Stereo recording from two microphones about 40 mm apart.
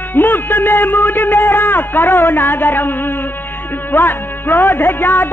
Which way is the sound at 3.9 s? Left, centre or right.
Left.